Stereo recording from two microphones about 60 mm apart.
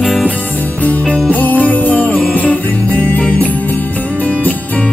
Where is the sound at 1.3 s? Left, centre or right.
Left.